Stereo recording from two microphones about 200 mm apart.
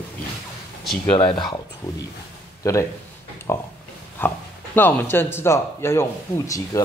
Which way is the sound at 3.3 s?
10° left (ahead or behind).